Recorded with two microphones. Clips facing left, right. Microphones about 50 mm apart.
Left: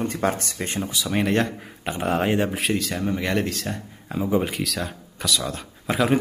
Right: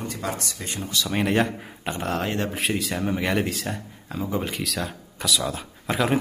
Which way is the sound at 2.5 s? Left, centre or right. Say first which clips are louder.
Left 1 dB; centre.